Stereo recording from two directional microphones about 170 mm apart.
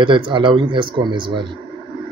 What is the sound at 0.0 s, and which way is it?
Speech, 30° right (ahead or behind).